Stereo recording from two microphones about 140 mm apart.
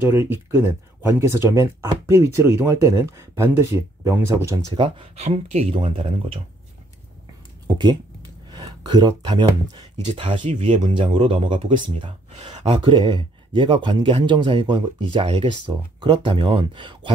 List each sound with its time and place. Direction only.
0.0 s speech: 15° right (ahead or behind)
4.7 s speech: 40° right (ahead or behind)
7.6 s speech: 30° right (ahead or behind)
12.0 s speech: 45° right (ahead or behind)